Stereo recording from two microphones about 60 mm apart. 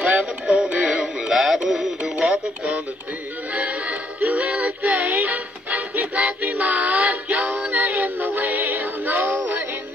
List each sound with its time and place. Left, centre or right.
0.0 s synthetic singing: right
0.5 s synthetic singing: centre
2.0 s music: centre
3.5 s music: right